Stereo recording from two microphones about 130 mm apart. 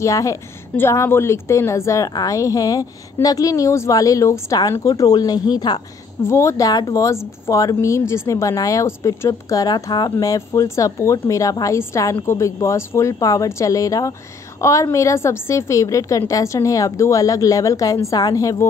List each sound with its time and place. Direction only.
0.0 s speech: 25° left (ahead or behind)